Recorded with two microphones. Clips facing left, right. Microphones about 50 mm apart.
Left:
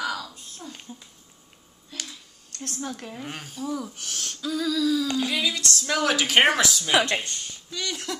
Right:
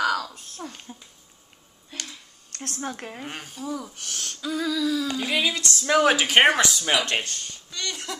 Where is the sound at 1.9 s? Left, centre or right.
Right.